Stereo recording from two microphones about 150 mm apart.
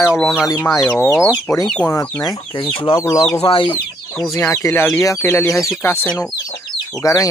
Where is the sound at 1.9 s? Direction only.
20° left (ahead or behind).